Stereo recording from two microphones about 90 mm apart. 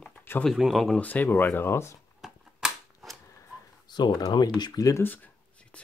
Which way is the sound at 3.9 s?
55° left (ahead or behind).